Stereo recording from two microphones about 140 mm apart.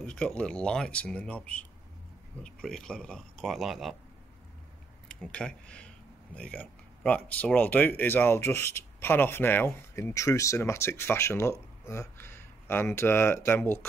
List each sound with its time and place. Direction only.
0.0 s speech: 5° left (ahead or behind)
5.0 s speech: 5° left (ahead or behind)